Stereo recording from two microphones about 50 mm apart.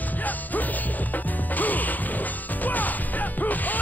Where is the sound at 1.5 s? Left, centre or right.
Left.